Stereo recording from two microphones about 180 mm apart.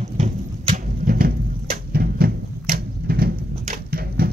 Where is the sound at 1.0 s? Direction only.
55° right (ahead or behind).